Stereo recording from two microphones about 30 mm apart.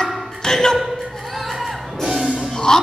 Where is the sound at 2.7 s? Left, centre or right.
Left.